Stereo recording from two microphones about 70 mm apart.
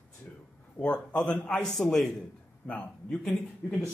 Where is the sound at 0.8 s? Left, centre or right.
Centre.